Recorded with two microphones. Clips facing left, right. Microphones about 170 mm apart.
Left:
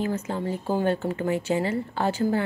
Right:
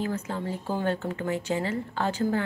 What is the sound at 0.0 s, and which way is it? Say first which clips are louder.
Speech: left 3 dB; 15° left (ahead or behind).